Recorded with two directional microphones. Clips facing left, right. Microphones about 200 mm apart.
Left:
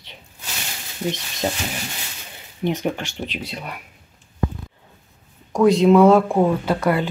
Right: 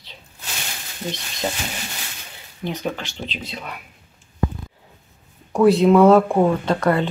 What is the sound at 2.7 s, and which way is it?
Speech, 15° left (ahead or behind).